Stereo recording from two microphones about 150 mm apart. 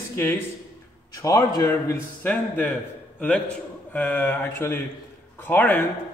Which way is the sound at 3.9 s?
10° left (ahead or behind).